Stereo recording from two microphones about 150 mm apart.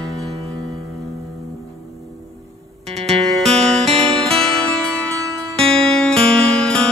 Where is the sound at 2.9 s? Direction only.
45° right (ahead or behind).